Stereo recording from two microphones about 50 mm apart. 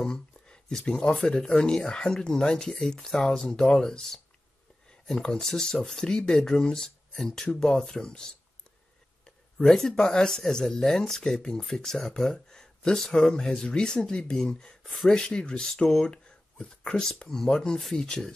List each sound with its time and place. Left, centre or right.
0.0 s speech: centre
5.2 s speech: centre
9.6 s speech: centre
15.9 s a sound: centre
16.9 s speech: centre